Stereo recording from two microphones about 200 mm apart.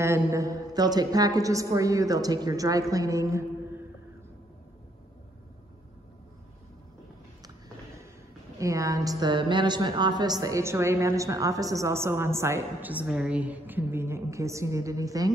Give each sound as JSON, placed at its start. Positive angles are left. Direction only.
{"t": 0.0, "sound": "a woman's voice", "side_deg": -15}
{"t": 8.5, "sound": "a woman's voice", "side_deg": -15}